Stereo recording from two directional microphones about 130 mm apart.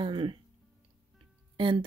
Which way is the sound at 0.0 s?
40° right (ahead or behind).